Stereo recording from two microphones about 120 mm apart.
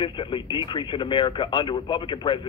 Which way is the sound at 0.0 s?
45° left (ahead or behind).